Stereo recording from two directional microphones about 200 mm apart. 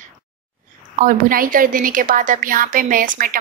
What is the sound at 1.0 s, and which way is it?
Speech, 45° right (ahead or behind).